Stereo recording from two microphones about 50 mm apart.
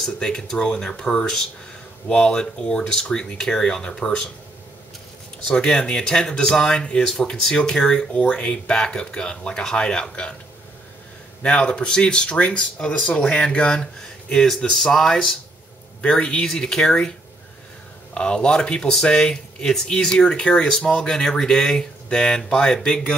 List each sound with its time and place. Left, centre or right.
0.0 s speech: centre
5.5 s speech: centre
11.4 s speech: centre
18.1 s speech: centre